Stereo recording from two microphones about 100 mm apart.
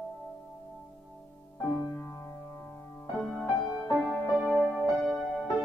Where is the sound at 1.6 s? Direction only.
25° left (ahead or behind).